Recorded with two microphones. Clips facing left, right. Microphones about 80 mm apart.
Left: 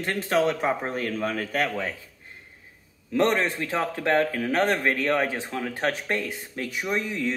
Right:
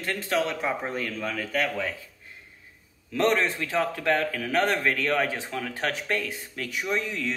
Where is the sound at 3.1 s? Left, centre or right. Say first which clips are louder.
Left 1 dB; left.